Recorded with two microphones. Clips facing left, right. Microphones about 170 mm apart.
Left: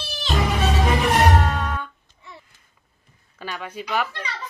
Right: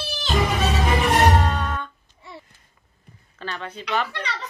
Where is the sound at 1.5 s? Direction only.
5° left (ahead or behind).